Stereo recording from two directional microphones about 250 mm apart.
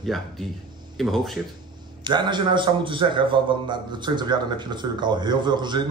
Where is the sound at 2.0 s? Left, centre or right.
Centre.